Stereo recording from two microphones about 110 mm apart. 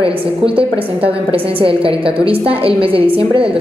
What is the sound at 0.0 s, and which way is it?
A woman's voice, 55° right (ahead or behind).